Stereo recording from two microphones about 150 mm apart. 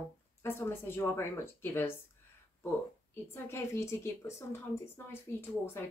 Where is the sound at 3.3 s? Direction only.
15° left (ahead or behind).